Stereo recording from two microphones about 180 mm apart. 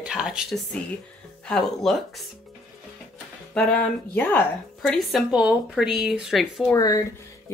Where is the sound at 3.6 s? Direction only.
5° left (ahead or behind).